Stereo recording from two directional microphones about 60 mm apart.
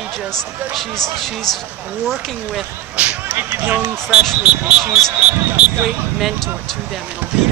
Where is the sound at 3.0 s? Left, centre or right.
Centre.